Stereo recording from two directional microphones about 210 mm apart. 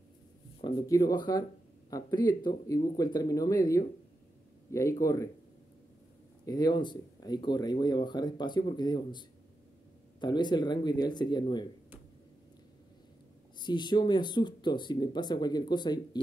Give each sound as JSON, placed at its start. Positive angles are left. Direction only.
{"t": 0.6, "sound": "speech", "side_deg": 20}
{"t": 6.4, "sound": "speech", "side_deg": 20}
{"t": 10.2, "sound": "speech", "side_deg": 20}
{"t": 13.6, "sound": "speech", "side_deg": 20}